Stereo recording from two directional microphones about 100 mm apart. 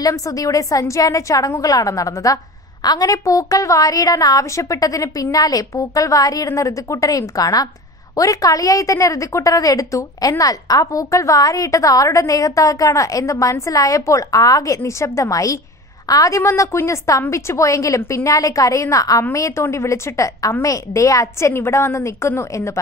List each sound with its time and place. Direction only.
0.0 s a woman's voice: 35° left (ahead or behind)